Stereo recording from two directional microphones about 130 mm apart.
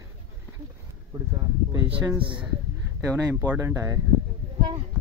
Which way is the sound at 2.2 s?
40° right (ahead or behind).